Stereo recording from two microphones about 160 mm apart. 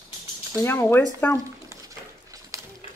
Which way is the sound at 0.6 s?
15° left (ahead or behind).